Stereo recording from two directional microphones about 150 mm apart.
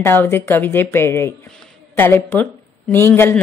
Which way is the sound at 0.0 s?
15° left (ahead or behind).